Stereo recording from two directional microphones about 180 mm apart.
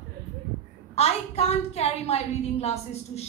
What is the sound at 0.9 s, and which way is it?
A woman's voice, 35° left (ahead or behind).